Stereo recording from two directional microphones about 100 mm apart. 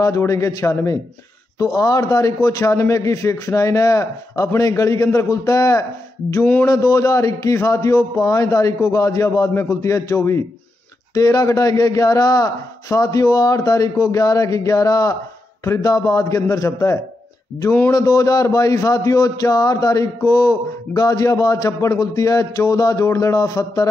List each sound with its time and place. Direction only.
0.0 s speech: 30° left (ahead or behind)